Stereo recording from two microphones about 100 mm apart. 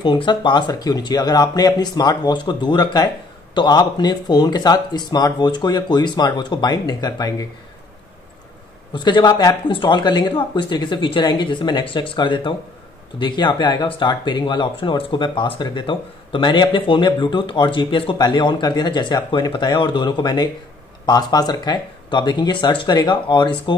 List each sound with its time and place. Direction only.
0.0 s speech: 50° left (ahead or behind)
8.9 s speech: 50° left (ahead or behind)